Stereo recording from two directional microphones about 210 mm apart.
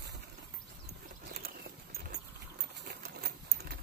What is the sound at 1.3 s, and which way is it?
Clip-clop, 45° right (ahead or behind).